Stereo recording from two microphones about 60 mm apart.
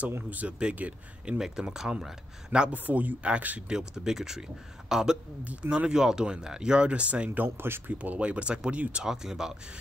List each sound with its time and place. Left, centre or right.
0.3 s speech: right
1.4 s speech: centre
2.7 s speech: right
3.7 s speech: centre
5.4 s speech: right
7.2 s speech: right
8.0 s speech: right
9.0 s speech: centre